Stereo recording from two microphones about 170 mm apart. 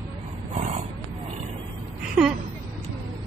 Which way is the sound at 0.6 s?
45° right (ahead or behind).